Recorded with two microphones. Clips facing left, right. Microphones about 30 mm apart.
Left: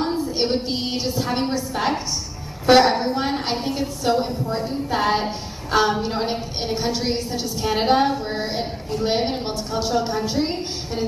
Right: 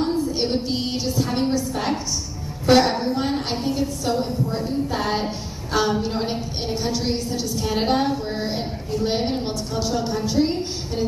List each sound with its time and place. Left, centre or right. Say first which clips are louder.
0.0 s a woman's voice: even; centre